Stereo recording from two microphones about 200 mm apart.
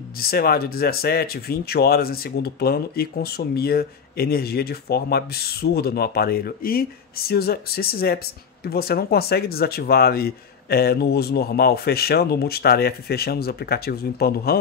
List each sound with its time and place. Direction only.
0.2 s speech: 50° left (ahead or behind)